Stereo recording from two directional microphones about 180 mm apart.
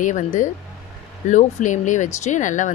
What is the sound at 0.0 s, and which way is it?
Speech, 45° left (ahead or behind).